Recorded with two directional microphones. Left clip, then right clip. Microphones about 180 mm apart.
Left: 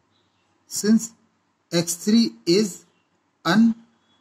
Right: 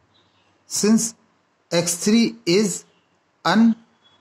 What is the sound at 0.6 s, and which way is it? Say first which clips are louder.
Speech: right 3 dB; 50° right (ahead or behind).